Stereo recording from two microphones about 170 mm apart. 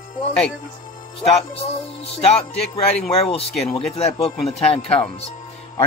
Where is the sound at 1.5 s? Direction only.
35° left (ahead or behind).